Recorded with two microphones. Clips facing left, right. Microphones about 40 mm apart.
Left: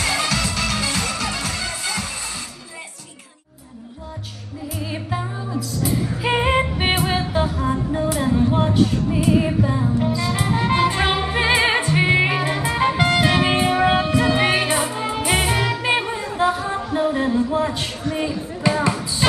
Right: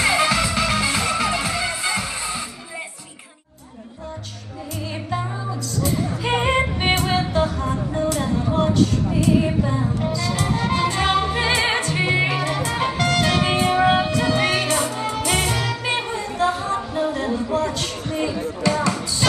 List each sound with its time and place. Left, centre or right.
0.0 s music: right
4.7 s music: centre